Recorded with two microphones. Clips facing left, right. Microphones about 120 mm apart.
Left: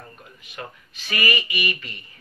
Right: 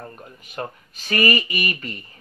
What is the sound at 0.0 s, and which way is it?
Speech, 40° right (ahead or behind).